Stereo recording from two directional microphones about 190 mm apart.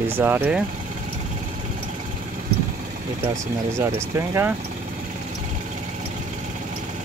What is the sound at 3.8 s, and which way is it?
Speech, 15° right (ahead or behind).